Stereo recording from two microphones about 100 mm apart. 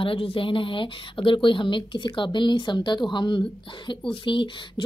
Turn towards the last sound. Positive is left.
turn(degrees=55)  # may be behind; listen again after turning